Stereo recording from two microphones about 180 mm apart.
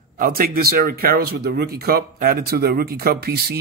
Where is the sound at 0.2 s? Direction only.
55° right (ahead or behind).